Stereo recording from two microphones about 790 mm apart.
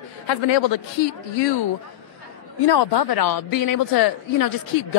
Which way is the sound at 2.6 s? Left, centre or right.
Left.